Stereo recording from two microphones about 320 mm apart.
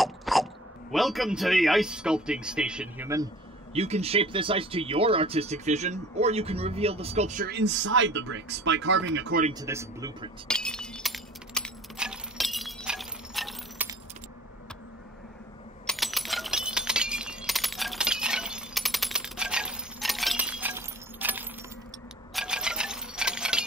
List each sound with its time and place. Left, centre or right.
0.0 s a sound: centre
0.9 s speech: centre
3.7 s speech: centre
9.6 s speech: centre
10.5 s glass: centre
15.9 s a sound: centre